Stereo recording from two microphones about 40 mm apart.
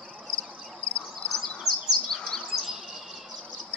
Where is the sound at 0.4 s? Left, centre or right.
Left.